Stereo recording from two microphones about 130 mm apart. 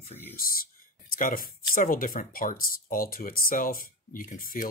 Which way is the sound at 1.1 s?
90° left.